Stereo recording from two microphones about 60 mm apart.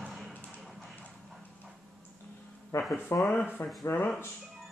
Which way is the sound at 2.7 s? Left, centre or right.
Left.